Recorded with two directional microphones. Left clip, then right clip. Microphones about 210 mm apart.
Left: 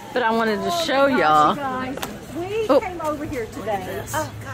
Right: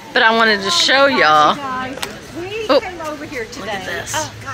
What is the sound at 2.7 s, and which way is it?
Speech, 15° left (ahead or behind).